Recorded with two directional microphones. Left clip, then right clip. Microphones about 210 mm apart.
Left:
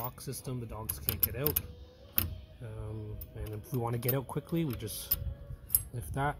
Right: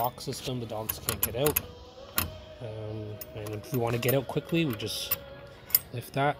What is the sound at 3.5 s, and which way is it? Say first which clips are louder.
Speech: right 6 dB; 5° right (ahead or behind).